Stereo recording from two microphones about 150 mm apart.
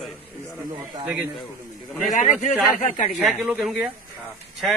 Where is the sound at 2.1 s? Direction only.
50° left (ahead or behind).